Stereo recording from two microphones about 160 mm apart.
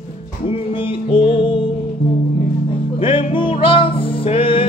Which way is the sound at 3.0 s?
35° left (ahead or behind).